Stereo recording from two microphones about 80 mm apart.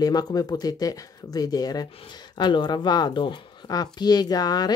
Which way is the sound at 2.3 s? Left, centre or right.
Left.